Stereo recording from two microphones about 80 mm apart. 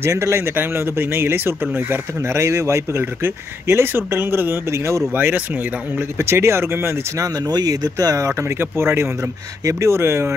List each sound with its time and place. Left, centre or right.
0.0 s speech: right
5.1 s speech: right
6.1 s speech: right
7.2 s speech: right